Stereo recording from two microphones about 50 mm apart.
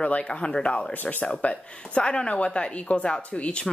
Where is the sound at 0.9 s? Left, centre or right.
Left.